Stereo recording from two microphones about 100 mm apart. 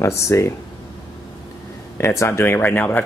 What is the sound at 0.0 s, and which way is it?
Speech, 30° left (ahead or behind).